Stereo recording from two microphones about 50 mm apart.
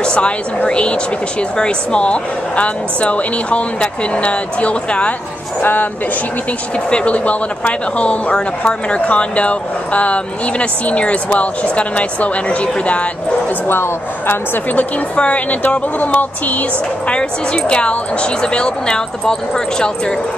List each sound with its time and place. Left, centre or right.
0.0 s a sound: left
0.7 s speech: left
6.9 s speech: left
13.7 s a woman's voice: left
14.8 s speech: left
17.1 s speech: centre